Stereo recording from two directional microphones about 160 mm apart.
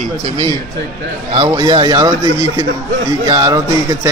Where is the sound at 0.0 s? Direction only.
40° right (ahead or behind).